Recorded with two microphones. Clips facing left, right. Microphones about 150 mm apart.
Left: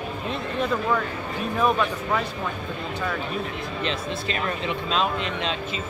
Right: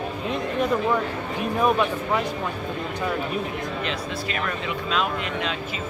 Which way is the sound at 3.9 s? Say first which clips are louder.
Left 1 dB; 25° left (ahead or behind).